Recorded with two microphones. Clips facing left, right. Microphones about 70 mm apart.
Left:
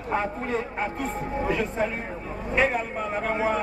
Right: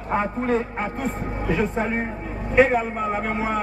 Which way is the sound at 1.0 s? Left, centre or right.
Centre.